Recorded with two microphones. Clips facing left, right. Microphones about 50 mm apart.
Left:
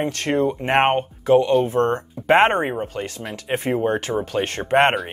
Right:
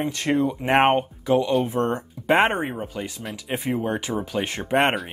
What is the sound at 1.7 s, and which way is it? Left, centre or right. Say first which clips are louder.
Speech: left 4 dB; left.